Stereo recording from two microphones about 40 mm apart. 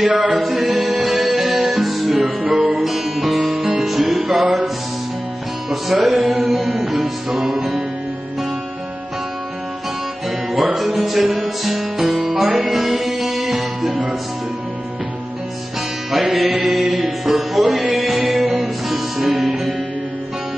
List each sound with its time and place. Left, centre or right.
0.0 s music: centre
0.4 s music: centre
2.2 s music: centre
2.8 s music: centre
5.7 s music: centre
6.1 s music: right
6.4 s music: centre
10.5 s music: centre
12.0 s music: centre
16.3 s music: right
16.6 s music: centre